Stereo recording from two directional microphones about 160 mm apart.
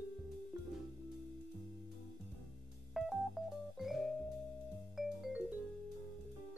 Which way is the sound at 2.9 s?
Centre (ahead or behind).